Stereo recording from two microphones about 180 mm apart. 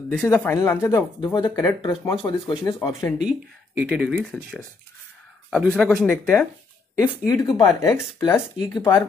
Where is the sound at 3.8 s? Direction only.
5° right (ahead or behind).